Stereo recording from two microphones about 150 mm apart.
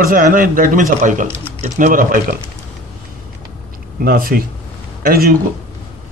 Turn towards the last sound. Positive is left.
turn(degrees=-90)